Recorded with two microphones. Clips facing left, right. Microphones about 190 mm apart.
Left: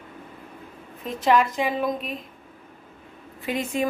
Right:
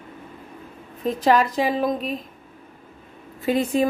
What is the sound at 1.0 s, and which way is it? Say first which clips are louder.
A woman's voice: right 2 dB; 35° right (ahead or behind).